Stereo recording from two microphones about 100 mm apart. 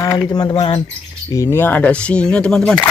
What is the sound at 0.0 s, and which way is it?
Speech, 40° left (ahead or behind).